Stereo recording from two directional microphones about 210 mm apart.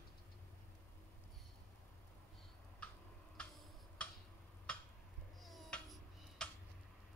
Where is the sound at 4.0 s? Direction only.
5° left (ahead or behind).